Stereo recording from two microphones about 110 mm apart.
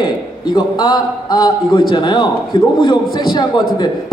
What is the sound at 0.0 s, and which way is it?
A man's voice, 40° left (ahead or behind).